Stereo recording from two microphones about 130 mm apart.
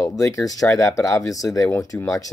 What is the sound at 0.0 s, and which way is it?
Speech, 25° left (ahead or behind).